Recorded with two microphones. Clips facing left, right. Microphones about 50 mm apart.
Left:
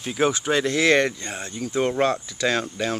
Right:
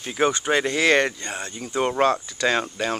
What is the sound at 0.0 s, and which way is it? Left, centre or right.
Speech, centre.